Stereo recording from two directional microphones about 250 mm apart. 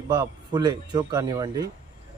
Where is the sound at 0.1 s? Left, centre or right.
Centre.